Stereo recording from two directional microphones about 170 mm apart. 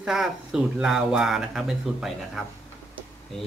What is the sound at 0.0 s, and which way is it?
Speech, 5° right (ahead or behind).